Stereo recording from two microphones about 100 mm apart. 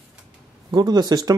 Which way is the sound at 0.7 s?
40° right (ahead or behind).